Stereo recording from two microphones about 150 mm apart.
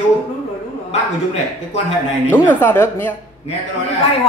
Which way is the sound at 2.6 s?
10° left (ahead or behind).